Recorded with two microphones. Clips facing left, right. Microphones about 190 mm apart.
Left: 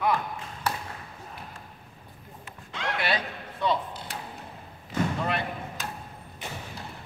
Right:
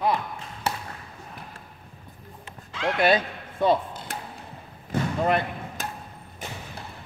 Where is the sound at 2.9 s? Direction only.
45° right (ahead or behind).